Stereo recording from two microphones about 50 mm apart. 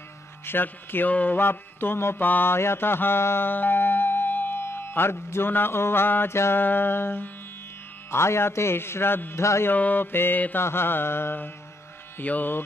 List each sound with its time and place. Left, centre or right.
0.5 s speech: left
1.4 s speech: left
2.4 s music: left
6.3 s a man's voice: left
6.6 s speech: left
8.1 s a man's voice: left
9.4 s mantra: left
9.7 s music: left
10.1 s speech: left
12.2 s music: left